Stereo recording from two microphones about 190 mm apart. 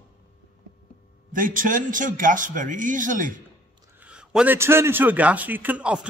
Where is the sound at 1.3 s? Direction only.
45° right (ahead or behind).